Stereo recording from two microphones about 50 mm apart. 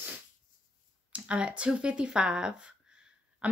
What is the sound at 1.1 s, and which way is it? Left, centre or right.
A woman's voice, right.